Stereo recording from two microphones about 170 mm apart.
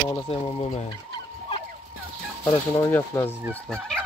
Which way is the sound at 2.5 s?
20° left (ahead or behind).